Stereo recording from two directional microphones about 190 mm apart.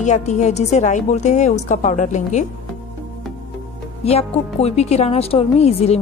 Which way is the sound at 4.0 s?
35° left (ahead or behind).